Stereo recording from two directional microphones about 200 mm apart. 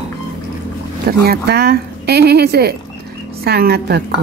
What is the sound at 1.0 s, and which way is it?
Speech, 55° right (ahead or behind).